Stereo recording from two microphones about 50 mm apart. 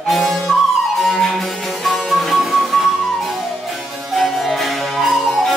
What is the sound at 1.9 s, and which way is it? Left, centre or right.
Music, centre.